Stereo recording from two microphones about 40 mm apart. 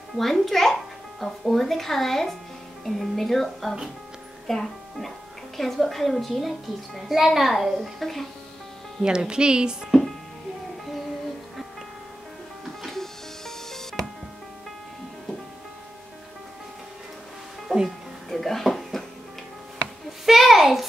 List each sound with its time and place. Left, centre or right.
0.1 s a child's voice: centre
8.0 s speech: centre
9.0 s speech: centre
9.8 s music: centre
12.8 s music: centre
17.8 s music: centre
20.2 s a sound: centre